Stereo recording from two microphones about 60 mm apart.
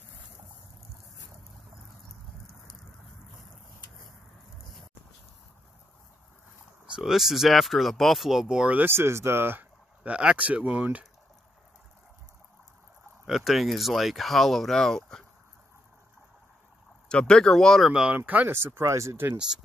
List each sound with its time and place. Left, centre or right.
7.0 s speech: centre
8.8 s speech: right
10.0 s speech: right
13.2 s speech: centre
17.1 s speech: centre
17.8 s speech: centre
18.1 s speech: right
18.5 s speech: right
19.3 s speech: centre